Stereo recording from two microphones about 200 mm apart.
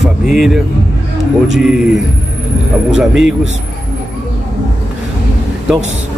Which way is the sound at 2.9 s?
5° right (ahead or behind).